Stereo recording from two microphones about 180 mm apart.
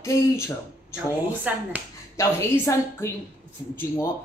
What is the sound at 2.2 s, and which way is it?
Speech, 15° left (ahead or behind).